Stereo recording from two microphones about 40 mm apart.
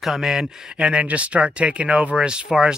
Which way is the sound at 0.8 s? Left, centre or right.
Right.